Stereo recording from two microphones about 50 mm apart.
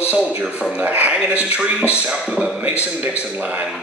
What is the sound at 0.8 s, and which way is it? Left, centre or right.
Speech, right.